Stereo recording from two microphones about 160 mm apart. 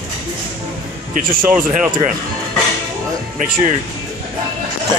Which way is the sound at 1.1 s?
60° right (ahead or behind).